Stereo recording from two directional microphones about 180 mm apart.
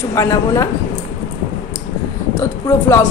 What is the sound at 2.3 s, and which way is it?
Speech, 15° left (ahead or behind).